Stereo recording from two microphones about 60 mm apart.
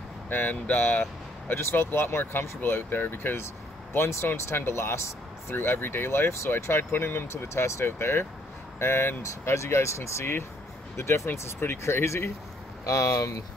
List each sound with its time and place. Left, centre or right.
0.3 s speech: left
1.5 s speech: left
12.8 s speech: left